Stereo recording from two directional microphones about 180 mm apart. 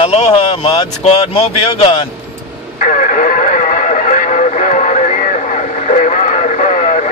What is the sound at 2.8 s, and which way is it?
Radio, 45° left (ahead or behind).